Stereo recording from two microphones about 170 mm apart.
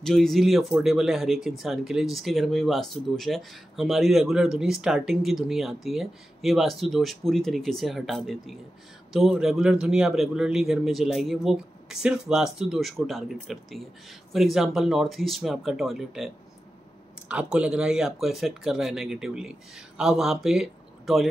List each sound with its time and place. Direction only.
0.0 s speech: 5° left (ahead or behind)
17.3 s speech: 5° right (ahead or behind)